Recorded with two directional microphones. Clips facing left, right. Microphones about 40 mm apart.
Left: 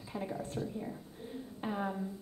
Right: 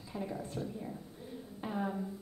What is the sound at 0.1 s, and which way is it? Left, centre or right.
Speech, left.